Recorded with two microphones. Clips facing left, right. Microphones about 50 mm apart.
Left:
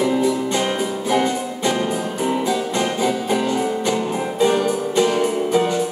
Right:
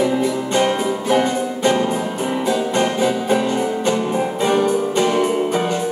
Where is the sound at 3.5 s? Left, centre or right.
Centre.